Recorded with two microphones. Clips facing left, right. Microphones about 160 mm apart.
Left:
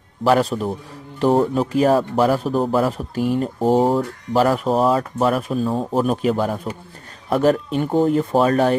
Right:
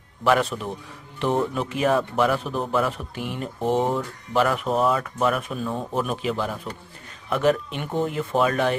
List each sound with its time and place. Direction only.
0.2 s a man's voice: 35° left (ahead or behind)